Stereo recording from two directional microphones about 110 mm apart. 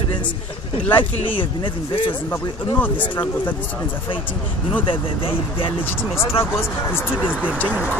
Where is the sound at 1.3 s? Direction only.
50° left (ahead or behind).